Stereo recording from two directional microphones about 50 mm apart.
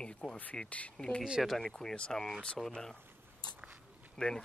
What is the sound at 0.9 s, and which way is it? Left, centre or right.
Speech, centre.